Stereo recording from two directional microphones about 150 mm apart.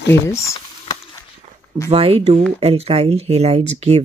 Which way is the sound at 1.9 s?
40° right (ahead or behind).